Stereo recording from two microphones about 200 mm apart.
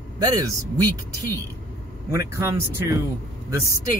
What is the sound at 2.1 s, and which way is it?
Speech, 15° right (ahead or behind).